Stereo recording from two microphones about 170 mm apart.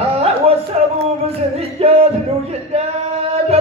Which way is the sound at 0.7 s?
40° right (ahead or behind).